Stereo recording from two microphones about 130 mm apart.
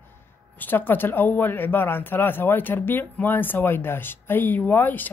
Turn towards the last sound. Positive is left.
turn(degrees=15)  # may be behind; listen again after turning